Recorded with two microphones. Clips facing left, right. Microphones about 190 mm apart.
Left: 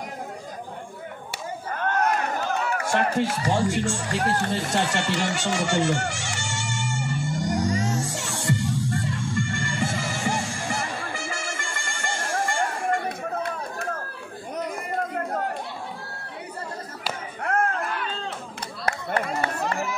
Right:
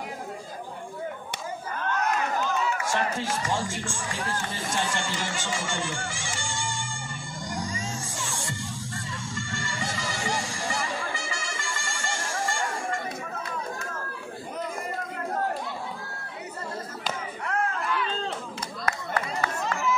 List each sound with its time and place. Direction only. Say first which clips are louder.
1.9 s music: left 3 dB; 50° left (ahead or behind)
17.4 s a sound: left 5 dB; 50° left (ahead or behind)
19.5 s run: left 2 dB; 55° left (ahead or behind)